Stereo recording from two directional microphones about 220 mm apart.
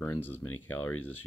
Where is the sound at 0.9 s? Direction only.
80° left.